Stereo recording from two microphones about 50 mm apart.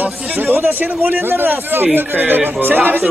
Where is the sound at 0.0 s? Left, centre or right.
Right.